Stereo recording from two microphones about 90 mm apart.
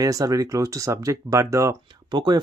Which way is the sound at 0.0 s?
40° right (ahead or behind).